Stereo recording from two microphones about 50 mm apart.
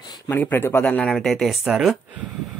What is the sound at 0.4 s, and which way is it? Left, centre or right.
Speech, left.